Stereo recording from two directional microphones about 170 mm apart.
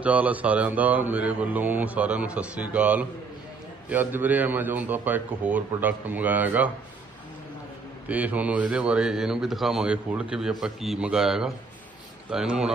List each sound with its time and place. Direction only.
0.0 s speech: 10° right (ahead or behind)
8.1 s a man's voice: 10° right (ahead or behind)